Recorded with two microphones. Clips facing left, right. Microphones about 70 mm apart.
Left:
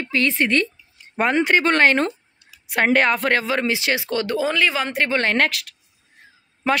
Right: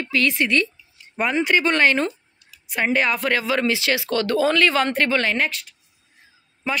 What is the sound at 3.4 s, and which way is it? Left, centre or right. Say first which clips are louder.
Speech: even; left.